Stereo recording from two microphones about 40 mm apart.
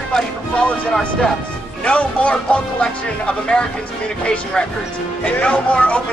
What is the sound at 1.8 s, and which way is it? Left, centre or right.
Speech, left.